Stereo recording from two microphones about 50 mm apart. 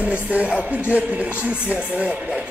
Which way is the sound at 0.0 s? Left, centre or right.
Right.